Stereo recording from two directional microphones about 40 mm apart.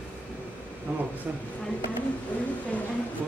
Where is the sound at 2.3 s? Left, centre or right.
Left.